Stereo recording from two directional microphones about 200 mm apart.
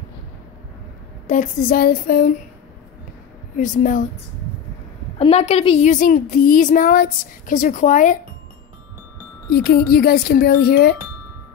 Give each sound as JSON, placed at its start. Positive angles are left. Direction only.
{"t": 1.2, "sound": "speech", "side_deg": 40}
{"t": 3.5, "sound": "a woman's voice", "side_deg": 40}
{"t": 5.2, "sound": "a woman's voice", "side_deg": 30}
{"t": 9.5, "sound": "speech", "side_deg": 50}